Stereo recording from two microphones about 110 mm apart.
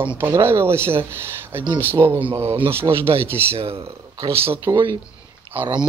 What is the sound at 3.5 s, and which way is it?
Speech, 60° right (ahead or behind).